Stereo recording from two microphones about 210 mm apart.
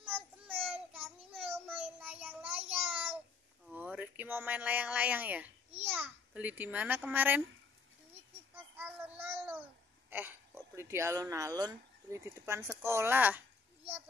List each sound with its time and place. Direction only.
0.0 s child singing: 10° right (ahead or behind)
3.6 s a child's voice: 5° right (ahead or behind)
8.7 s child singing: 10° right (ahead or behind)
10.0 s speech: 10° right (ahead or behind)